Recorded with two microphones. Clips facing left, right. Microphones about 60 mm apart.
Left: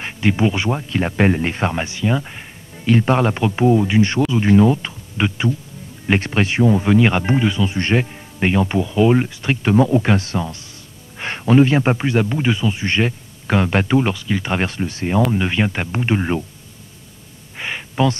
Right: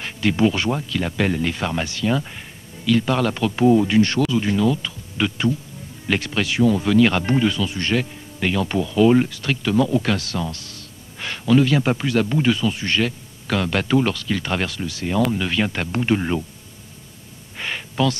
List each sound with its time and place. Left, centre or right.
0.0 s speech: left
0.8 s speech: left
2.8 s speech: left
14.7 s speech: left
17.6 s a sound: centre